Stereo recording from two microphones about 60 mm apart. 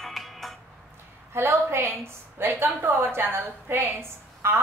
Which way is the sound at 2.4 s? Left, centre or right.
Right.